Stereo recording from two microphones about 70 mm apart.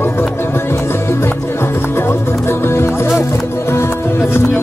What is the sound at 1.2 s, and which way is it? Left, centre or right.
Music, left.